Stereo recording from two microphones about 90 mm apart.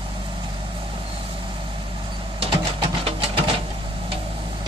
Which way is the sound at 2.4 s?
75° right (ahead or behind).